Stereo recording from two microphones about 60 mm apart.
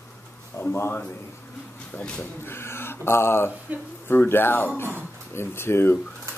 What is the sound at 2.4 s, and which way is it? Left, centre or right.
A man's voice, left.